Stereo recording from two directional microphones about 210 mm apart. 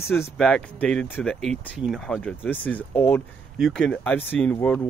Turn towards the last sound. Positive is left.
turn(degrees=10)  # may be behind; listen again after turning